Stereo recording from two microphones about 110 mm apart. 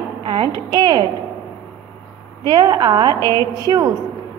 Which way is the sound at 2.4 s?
40° right (ahead or behind).